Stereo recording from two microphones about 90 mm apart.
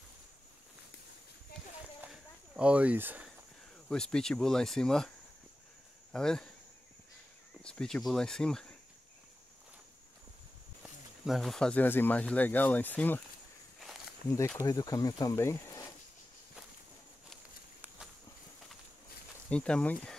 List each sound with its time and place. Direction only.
2.5 s speech: 15° right (ahead or behind)
3.9 s speech: 5° left (ahead or behind)
6.1 s speech: 5° left (ahead or behind)
7.6 s speech: 10° left (ahead or behind)
10.8 s snake: centre (ahead or behind)
11.8 s speech: 20° left (ahead or behind)
14.6 s speech: 40° left (ahead or behind)
15.3 s speech: 30° left (ahead or behind)
19.5 s speech: 10° left (ahead or behind)